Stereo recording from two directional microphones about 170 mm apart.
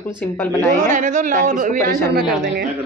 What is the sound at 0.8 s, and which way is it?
Speech, 50° right (ahead or behind).